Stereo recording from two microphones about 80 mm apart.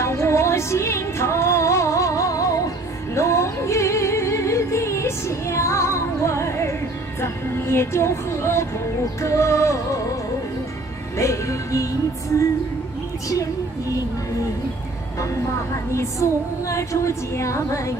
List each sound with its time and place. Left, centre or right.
0.0 s music: left
11.1 s music: left
15.9 s speech: left